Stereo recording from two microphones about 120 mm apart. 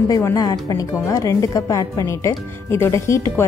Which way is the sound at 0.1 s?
30° left (ahead or behind).